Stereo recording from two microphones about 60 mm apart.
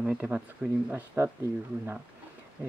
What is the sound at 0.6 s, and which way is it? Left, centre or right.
Speech, right.